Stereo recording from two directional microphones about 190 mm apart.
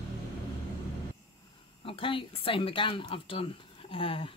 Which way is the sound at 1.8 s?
30° left (ahead or behind).